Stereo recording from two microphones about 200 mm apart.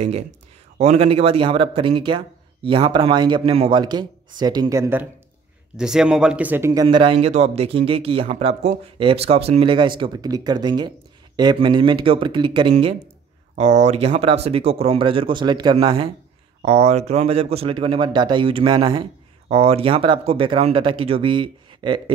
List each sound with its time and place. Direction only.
0.7 s speech: 30° right (ahead or behind); by 5.0 s 15° right (ahead or behind)
5.8 s speech: 5° right (ahead or behind); by 22.1 s 25° right (ahead or behind)